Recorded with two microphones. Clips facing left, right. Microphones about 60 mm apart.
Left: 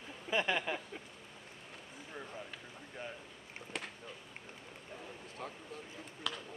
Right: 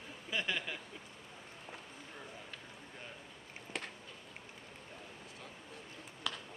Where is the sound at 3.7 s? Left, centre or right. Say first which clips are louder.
Even; centre.